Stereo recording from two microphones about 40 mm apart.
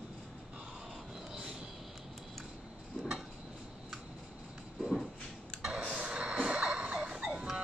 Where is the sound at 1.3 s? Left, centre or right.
Centre.